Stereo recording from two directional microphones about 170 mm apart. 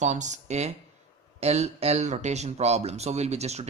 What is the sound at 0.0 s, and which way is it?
Speech, 45° right (ahead or behind).